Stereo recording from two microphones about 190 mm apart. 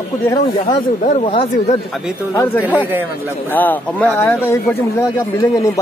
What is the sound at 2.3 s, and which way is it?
Speech, 15° left (ahead or behind).